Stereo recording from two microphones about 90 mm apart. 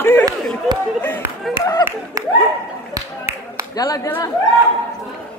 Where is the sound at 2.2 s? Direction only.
40° right (ahead or behind).